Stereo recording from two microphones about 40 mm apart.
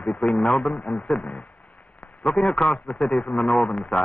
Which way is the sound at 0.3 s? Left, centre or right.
Left.